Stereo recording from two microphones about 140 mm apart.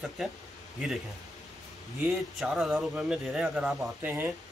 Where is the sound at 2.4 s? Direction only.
5° right (ahead or behind).